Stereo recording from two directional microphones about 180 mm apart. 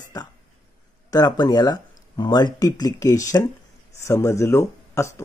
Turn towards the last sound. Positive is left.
turn(degrees=15)  # may be behind; listen again after turning